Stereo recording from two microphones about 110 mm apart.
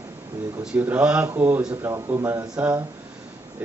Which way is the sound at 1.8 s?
25° right (ahead or behind).